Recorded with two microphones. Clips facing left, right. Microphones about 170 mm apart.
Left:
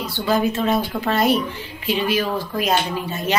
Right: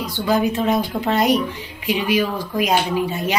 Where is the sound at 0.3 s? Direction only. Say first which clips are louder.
Right 1 dB; 15° right (ahead or behind).